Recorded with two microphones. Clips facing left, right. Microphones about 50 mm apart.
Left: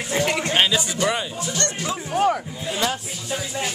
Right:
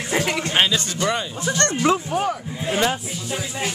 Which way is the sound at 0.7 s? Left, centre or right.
Centre.